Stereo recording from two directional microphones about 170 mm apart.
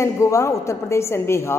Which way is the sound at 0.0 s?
15° left (ahead or behind).